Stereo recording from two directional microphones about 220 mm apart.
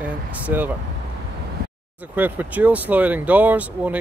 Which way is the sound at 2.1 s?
10° right (ahead or behind).